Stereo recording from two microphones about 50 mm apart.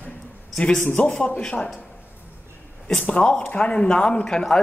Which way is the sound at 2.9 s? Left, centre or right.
Centre.